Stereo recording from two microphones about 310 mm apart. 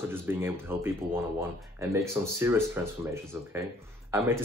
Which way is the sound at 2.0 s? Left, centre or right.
Centre.